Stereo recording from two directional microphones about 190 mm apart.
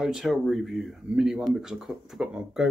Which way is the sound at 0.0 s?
Centre (ahead or behind).